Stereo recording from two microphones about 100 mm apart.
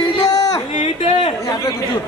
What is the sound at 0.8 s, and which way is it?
Speech, 75° left (ahead or behind).